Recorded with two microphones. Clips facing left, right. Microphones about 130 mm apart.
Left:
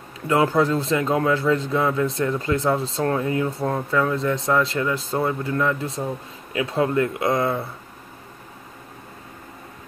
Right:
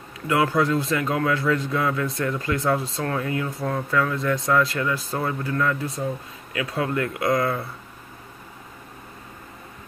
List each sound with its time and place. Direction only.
0.3 s speech: 30° left (ahead or behind)